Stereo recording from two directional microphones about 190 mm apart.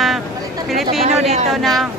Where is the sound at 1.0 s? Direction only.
35° right (ahead or behind).